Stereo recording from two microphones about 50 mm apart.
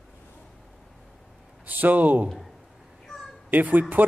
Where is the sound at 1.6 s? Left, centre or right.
Right.